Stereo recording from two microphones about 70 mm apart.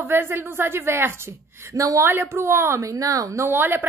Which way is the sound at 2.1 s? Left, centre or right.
Right.